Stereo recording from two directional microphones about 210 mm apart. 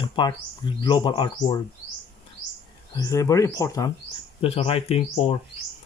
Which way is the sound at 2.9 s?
15° left (ahead or behind).